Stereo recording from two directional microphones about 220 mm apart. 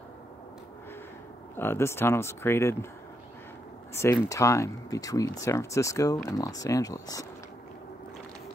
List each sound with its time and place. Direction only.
1.6 s speech: 10° left (ahead or behind)
3.9 s speech: 15° left (ahead or behind)